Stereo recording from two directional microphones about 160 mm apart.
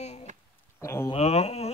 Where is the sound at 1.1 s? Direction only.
40° left (ahead or behind).